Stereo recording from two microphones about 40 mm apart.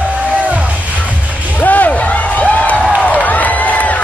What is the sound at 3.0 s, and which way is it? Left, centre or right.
Crowd, left.